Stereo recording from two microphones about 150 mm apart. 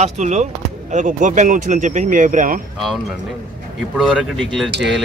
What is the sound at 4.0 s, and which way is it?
Speech, centre (ahead or behind).